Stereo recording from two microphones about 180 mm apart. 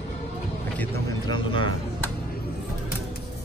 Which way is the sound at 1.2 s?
25° left (ahead or behind).